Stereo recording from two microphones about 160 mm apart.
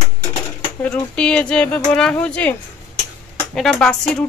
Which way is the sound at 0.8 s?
5° left (ahead or behind).